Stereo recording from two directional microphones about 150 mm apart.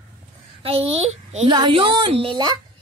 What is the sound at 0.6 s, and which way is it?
A child's voice, 40° right (ahead or behind).